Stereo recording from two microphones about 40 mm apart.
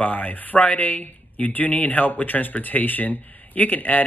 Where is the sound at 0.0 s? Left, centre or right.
Left.